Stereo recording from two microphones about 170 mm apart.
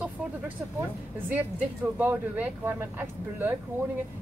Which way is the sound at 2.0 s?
10° right (ahead or behind).